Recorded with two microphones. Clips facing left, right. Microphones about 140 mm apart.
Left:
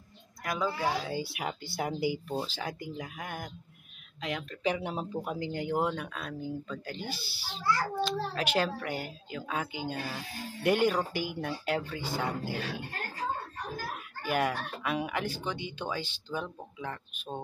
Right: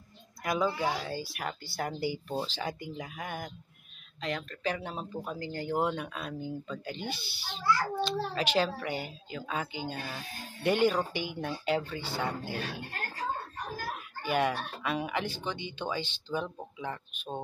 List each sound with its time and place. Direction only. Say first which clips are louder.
0.4 s a sound: right 3 dB; centre (ahead or behind)
0.7 s speech: left 1 dB; centre (ahead or behind)
1.4 s speech: left 1 dB; 10° left (ahead or behind)
5.8 s speech: right 3 dB; 5° right (ahead or behind)
14.2 s speech: right 1 dB; 5° left (ahead or behind)